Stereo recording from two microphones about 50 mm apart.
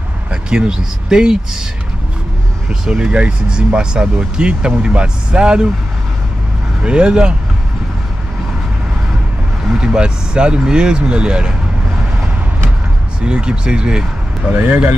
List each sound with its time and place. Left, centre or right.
0.3 s speech: centre
2.7 s speech: centre
6.8 s speech: centre
9.8 s speech: centre
13.2 s speech: centre
14.5 s speech: right